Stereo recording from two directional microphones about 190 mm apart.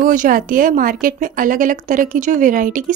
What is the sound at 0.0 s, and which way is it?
Speech, 45° right (ahead or behind).